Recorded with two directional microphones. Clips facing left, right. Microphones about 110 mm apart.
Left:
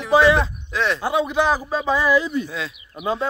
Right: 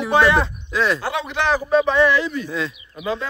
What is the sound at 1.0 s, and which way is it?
A man's voice, 15° left (ahead or behind).